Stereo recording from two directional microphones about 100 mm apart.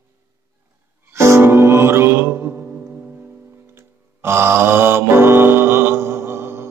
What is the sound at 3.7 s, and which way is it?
Mantra, 25° right (ahead or behind).